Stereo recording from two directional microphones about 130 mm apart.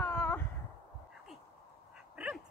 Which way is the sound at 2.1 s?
10° right (ahead or behind).